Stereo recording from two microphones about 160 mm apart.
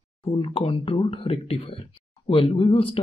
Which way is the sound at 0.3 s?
30° left (ahead or behind).